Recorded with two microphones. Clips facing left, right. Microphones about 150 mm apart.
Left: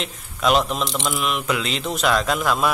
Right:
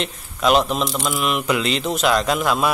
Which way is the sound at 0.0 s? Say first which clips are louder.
Right 2 dB; centre (ahead or behind).